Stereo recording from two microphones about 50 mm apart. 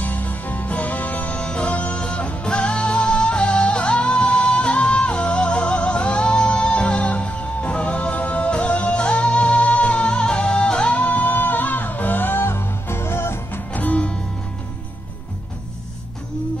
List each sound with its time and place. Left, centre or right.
0.0 s music: left
1.4 s music: left
1.7 s music: left
11.0 s music: left
13.7 s music: left